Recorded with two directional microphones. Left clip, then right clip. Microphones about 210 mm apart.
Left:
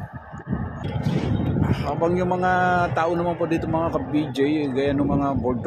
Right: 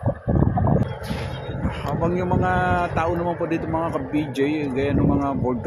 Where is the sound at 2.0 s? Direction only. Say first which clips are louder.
Left 1 dB; 10° left (ahead or behind).